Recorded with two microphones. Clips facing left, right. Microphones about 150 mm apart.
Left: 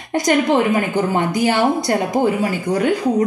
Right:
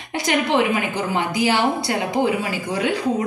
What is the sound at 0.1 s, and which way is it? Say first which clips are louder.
A man's voice: left 4 dB; 50° left (ahead or behind).